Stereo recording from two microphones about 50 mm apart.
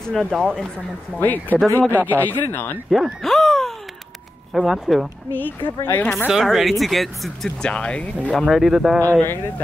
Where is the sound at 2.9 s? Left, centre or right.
Centre.